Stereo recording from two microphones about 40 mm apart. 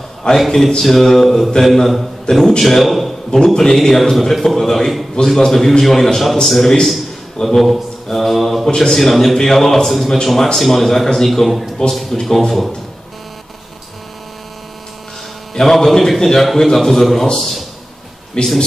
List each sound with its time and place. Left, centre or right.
0.2 s a man's voice: left
0.7 s a man's voice: centre
2.3 s a man's voice: centre
2.6 s a man's voice: centre
7.4 s a man's voice: centre
8.6 s a man's voice: centre
8.9 s a man's voice: centre
15.5 s a man's voice: centre
18.4 s a man's voice: centre